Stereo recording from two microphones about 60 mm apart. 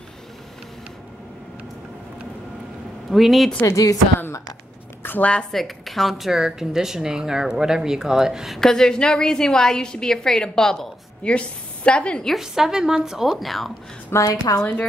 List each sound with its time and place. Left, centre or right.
3.1 s speech: centre
3.6 s a woman's voice: left
5.0 s a sound: left
5.5 s speech: centre
8.5 s a woman's voice: centre
12.4 s speech: centre
14.1 s a woman's voice: left
14.5 s a woman's voice: left